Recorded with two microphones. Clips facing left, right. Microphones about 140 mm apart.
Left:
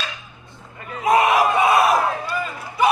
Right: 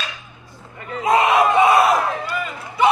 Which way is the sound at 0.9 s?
25° right (ahead or behind).